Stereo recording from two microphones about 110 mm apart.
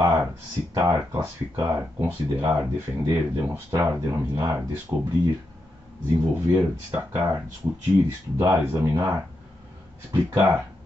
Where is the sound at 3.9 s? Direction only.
25° right (ahead or behind).